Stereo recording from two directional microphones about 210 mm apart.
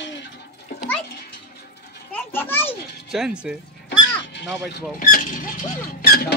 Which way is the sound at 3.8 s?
55° left (ahead or behind).